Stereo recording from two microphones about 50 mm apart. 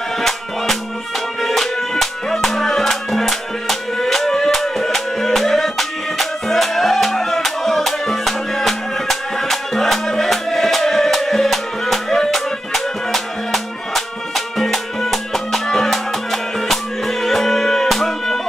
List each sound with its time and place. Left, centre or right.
1.4 s music: centre